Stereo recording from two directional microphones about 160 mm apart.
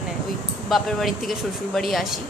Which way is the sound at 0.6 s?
Centre (ahead or behind).